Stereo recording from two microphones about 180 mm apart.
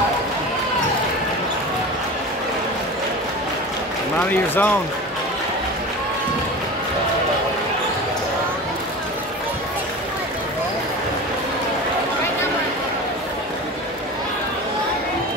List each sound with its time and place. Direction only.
4.3 s speech: 10° left (ahead or behind)